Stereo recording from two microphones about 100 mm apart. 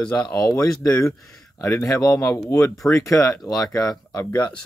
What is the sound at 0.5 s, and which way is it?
Speech, 35° left (ahead or behind).